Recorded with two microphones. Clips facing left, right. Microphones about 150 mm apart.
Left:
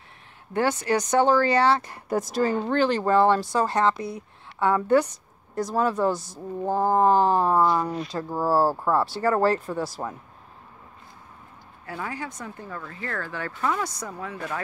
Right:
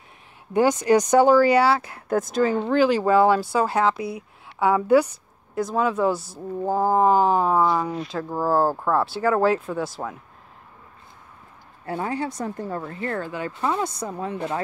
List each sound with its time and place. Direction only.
0.5 s speech: 15° right (ahead or behind); by 10.1 s centre (ahead or behind)
11.8 s speech: 30° right (ahead or behind)